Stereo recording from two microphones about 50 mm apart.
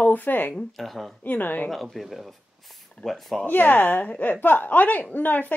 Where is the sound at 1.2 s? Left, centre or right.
Left.